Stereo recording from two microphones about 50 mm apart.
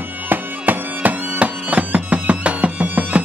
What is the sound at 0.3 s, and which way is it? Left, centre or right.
Music, right.